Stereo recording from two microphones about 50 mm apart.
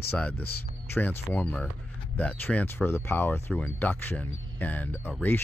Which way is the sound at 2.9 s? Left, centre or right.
Left.